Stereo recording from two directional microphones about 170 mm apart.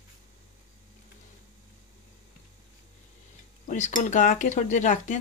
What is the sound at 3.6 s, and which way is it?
Speech, 45° left (ahead or behind).